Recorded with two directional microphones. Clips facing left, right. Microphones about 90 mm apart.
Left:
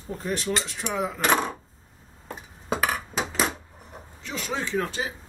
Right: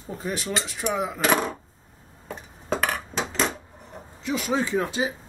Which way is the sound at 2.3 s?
5° left (ahead or behind).